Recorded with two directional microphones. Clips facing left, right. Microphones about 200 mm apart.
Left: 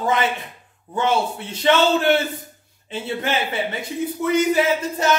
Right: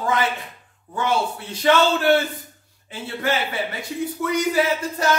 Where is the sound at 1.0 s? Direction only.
20° left (ahead or behind).